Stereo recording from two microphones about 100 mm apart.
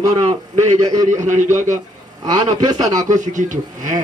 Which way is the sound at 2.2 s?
45° right (ahead or behind).